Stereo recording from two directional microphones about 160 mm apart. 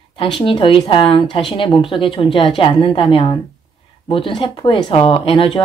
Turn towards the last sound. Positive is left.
turn(degrees=35)  # may be behind; listen again after turning